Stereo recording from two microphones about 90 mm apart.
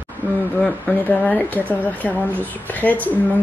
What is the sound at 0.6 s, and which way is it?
A woman's voice, 15° left (ahead or behind).